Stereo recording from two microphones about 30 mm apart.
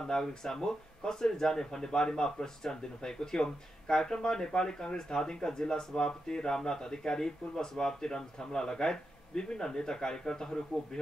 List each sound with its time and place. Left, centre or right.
0.4 s speech: left